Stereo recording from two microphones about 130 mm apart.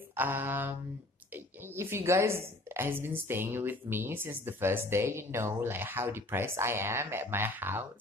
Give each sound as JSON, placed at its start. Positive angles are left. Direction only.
{"t": 0.1, "sound": "speech", "side_deg": -15}